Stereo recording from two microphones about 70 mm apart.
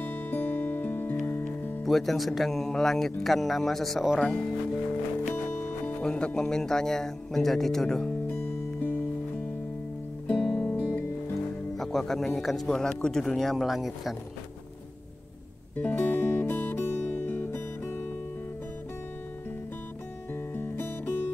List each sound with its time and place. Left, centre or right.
0.0 s music: left
1.9 s speech: centre
4.2 s a man's voice: centre
6.0 s a man's voice: centre
8.3 s music: left
10.2 s music: left
11.7 s music: centre
12.4 s speech: centre
15.7 s music: left
20.5 s music: left